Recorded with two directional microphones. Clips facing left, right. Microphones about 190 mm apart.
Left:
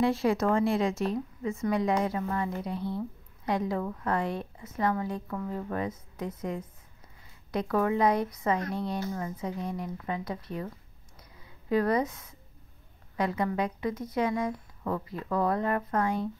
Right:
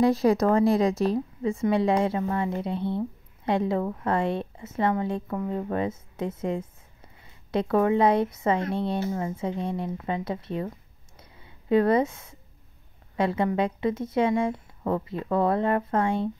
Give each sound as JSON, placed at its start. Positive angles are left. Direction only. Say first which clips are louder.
{"t": 0.0, "sound": "a woman's voice", "louder": "right 5 dB", "side_deg": -40}
{"t": 11.1, "sound": "a sound", "louder": "right 2 dB", "side_deg": -25}
{"t": 13.1, "sound": "a woman's voice", "louder": "right 4 dB", "side_deg": -25}